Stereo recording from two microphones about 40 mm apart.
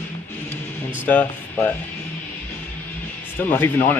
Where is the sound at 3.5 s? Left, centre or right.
Left.